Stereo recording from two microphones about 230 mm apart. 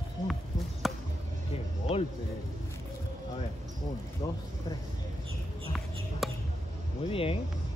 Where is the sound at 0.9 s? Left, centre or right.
Centre.